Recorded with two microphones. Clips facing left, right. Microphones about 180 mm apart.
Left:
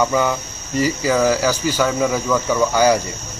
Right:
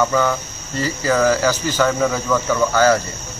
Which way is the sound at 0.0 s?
15° left (ahead or behind).